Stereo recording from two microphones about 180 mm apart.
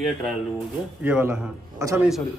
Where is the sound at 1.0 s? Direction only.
10° right (ahead or behind).